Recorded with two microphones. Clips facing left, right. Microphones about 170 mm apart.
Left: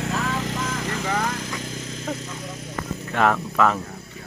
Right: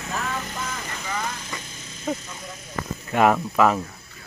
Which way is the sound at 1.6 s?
90° left.